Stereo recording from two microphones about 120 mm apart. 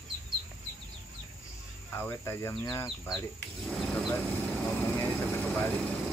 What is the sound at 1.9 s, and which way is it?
Speech, 20° left (ahead or behind).